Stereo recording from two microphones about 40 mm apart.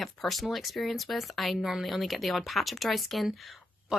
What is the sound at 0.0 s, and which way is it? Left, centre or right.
Speech, centre.